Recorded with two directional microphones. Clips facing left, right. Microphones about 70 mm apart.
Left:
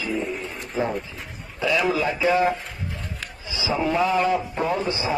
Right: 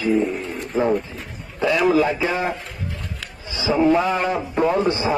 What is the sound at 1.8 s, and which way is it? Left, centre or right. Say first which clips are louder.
Speech: right 6 dB; right.